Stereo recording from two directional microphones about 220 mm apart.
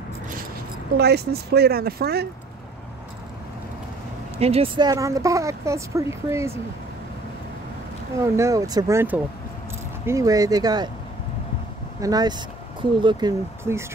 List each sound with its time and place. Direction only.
0.9 s speech: 45° right (ahead or behind)
4.4 s speech: 25° right (ahead or behind)
8.4 s speech: 15° right (ahead or behind)
12.0 s speech: 15° right (ahead or behind)